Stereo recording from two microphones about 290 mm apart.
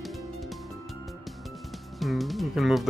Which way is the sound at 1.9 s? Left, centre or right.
Centre.